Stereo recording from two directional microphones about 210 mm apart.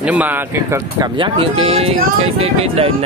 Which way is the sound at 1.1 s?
25° right (ahead or behind).